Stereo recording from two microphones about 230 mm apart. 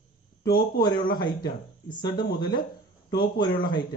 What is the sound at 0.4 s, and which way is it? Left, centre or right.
A man's voice, centre.